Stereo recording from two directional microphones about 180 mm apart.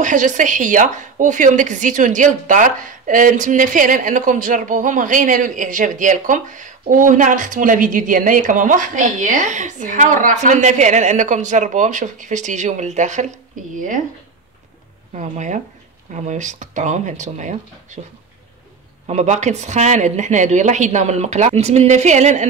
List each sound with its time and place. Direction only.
0.0 s speech: 45° right (ahead or behind)
15.1 s speech: 40° right (ahead or behind)
19.0 s speech: 40° right (ahead or behind)